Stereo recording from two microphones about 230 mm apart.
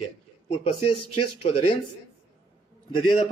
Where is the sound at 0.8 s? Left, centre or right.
Left.